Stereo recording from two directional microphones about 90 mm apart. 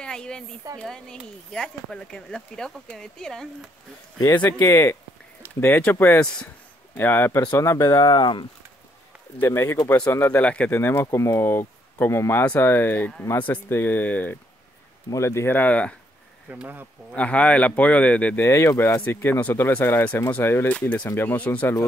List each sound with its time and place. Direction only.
0.0 s speech: 10° left (ahead or behind)
4.5 s speech: 30° left (ahead or behind)
6.1 s speech: 10° left (ahead or behind)
7.0 s speech: 25° left (ahead or behind); by 8.5 s 55° left (ahead or behind)
9.4 s speech: 30° left (ahead or behind)
10.4 s speech: 15° left (ahead or behind)
10.7 s speech: 25° left (ahead or behind)
15.0 s speech: 35° left (ahead or behind); by 16.0 s 15° left (ahead or behind)
16.4 s speech: 20° right (ahead or behind)
17.1 s speech: 15° left (ahead or behind)
18.4 s speech: 30° left (ahead or behind)
18.9 s speech: 20° left (ahead or behind)